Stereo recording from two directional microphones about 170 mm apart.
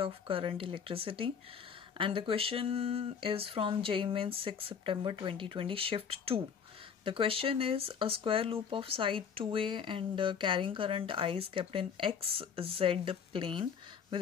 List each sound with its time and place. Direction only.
0.0 s speech: 30° right (ahead or behind)